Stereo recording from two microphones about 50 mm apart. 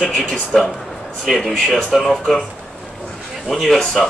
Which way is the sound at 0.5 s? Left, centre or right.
Centre.